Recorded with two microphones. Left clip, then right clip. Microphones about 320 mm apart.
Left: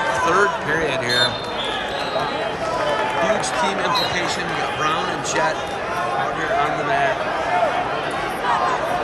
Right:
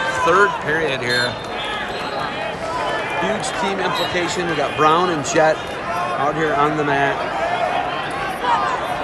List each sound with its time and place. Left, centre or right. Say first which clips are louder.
0.3 s speech: right 5 dB; centre
4.7 s a man's voice: right 9 dB; centre